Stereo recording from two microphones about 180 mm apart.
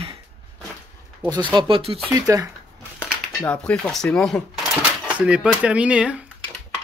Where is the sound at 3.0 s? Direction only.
10° left (ahead or behind).